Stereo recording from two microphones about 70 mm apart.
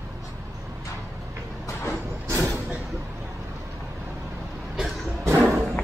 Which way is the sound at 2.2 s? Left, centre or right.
Right.